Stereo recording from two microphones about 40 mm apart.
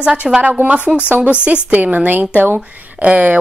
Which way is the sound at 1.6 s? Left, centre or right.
Right.